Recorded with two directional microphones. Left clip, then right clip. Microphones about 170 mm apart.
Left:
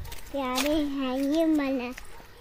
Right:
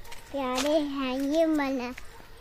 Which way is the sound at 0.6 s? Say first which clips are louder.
Right 1 dB; 15° right (ahead or behind).